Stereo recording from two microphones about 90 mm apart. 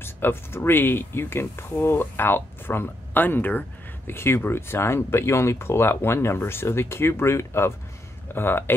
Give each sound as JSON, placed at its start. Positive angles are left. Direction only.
{"t": 0.0, "sound": "speech", "side_deg": 25}